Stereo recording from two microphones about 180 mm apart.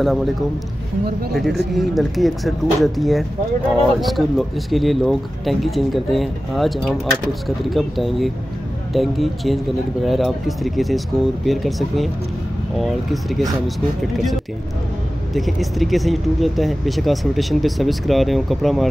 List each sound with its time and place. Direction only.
0.0 s speech: centre (ahead or behind)
1.3 s speech: centre (ahead or behind)
15.3 s speech: centre (ahead or behind)